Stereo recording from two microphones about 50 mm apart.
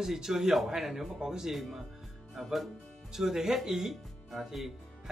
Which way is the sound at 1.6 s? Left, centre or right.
Centre.